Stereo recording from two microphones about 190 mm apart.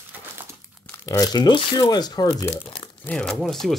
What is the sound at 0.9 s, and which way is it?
Speech, 15° left (ahead or behind).